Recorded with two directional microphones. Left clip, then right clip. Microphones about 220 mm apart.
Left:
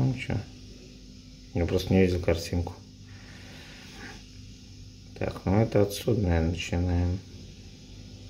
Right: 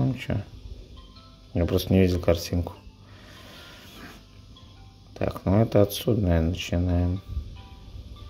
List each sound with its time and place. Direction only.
0.0 s a sound: 20° right (ahead or behind)
1.5 s speech: 20° right (ahead or behind)
5.1 s speech: 20° right (ahead or behind)